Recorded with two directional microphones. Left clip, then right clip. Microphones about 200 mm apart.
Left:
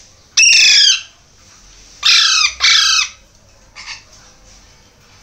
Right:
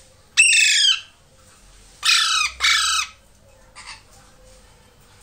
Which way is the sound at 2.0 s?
10° left (ahead or behind).